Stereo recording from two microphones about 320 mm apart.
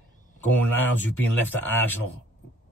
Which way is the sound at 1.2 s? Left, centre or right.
Centre.